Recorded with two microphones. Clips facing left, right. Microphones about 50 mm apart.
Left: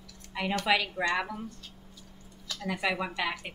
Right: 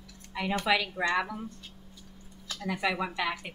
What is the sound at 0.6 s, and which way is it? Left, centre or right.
Speech, centre.